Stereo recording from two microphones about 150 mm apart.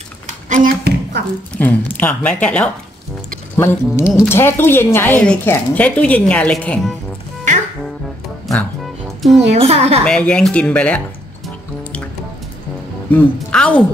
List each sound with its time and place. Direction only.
0.5 s a sound: 65° right (ahead or behind)
1.5 s a woman's voice: 10° left (ahead or behind)
8.5 s music: centre (ahead or behind)
9.5 s a woman's voice: 45° right (ahead or behind)
10.0 s a woman's voice: 5° left (ahead or behind)
13.1 s a woman's voice: 5° left (ahead or behind)